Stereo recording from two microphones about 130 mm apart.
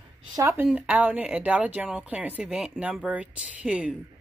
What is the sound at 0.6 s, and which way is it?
A woman's voice, 10° right (ahead or behind).